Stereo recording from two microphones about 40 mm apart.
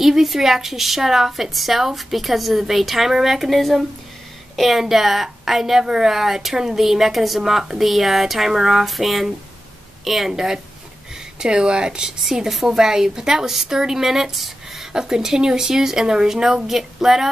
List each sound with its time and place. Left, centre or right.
0.0 s a woman's voice: centre
11.3 s a woman's voice: right
16.6 s a woman's voice: centre